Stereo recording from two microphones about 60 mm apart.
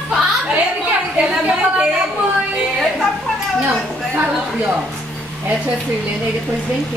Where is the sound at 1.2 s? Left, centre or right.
Centre.